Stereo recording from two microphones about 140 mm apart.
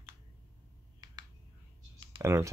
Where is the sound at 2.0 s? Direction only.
20° right (ahead or behind).